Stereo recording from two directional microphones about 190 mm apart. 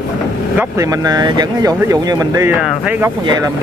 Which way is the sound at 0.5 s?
15° right (ahead or behind).